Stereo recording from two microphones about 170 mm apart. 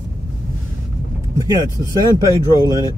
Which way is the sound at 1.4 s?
20° right (ahead or behind).